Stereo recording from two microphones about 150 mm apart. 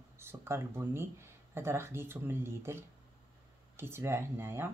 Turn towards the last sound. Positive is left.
turn(degrees=-15)  # may be behind; listen again after turning